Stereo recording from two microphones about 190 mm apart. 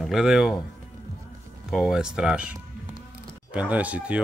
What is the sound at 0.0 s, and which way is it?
Speech, centre (ahead or behind).